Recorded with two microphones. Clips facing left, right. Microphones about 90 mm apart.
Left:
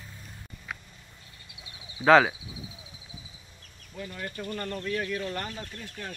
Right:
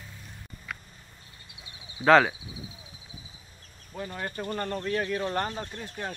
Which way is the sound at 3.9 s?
40° right (ahead or behind).